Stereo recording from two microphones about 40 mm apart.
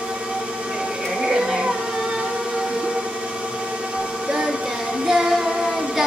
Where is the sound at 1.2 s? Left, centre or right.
Centre.